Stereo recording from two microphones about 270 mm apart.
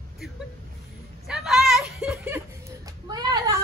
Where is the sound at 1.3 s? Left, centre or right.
Centre.